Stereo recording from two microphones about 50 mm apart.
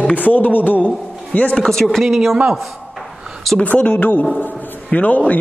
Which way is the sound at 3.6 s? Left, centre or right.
Left.